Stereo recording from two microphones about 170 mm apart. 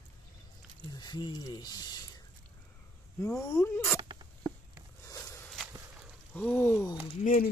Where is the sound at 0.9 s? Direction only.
25° left (ahead or behind).